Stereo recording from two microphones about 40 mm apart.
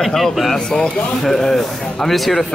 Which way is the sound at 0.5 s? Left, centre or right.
Left.